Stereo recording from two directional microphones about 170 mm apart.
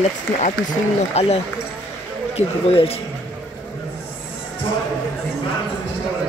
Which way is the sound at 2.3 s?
35° left (ahead or behind).